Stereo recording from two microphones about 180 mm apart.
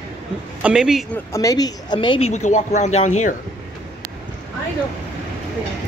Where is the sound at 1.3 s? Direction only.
20° left (ahead or behind); by 3.4 s 40° left (ahead or behind).